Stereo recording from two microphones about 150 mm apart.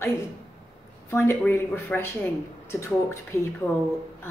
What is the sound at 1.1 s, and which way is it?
A woman's voice, 15° left (ahead or behind).